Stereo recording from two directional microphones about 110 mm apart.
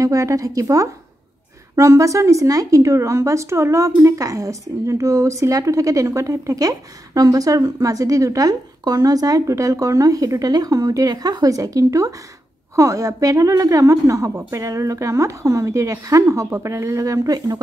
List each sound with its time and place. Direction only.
0.0 s a woman's voice: 30° right (ahead or behind)